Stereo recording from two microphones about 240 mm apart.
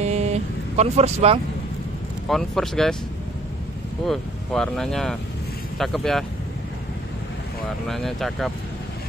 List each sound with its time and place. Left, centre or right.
0.0 s vehicle: right
2.2 s speech: centre
4.0 s speech: centre
7.9 s speech: centre